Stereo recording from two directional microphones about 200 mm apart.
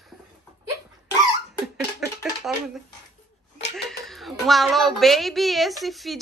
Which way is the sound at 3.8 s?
Centre (ahead or behind).